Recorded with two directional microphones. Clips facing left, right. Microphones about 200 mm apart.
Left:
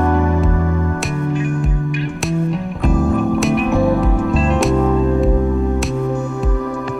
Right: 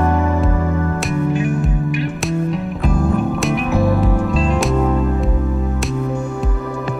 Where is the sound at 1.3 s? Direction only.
5° right (ahead or behind).